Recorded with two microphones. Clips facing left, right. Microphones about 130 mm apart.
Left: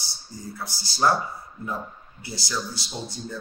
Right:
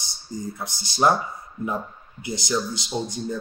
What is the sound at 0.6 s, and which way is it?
Speech, 20° right (ahead or behind).